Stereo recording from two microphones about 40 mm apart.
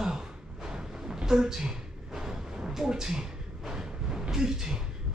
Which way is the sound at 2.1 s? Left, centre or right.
Centre.